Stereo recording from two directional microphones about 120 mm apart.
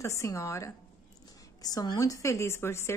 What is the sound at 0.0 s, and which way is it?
A woman's voice, 25° left (ahead or behind).